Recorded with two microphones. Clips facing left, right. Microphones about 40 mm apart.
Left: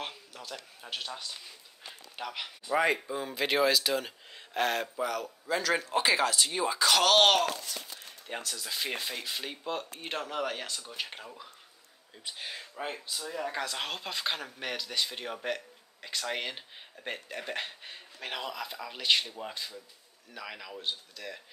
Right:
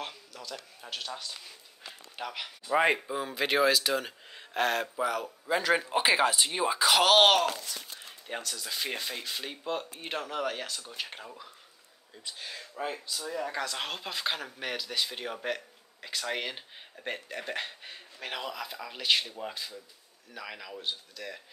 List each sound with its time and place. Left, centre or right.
0.0 s a sound: centre
0.7 s speech: centre
12.3 s speech: centre